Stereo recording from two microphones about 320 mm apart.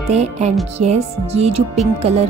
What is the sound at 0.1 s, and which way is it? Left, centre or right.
Speech, centre.